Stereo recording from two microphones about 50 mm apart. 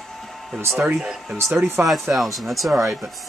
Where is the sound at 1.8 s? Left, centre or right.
Right.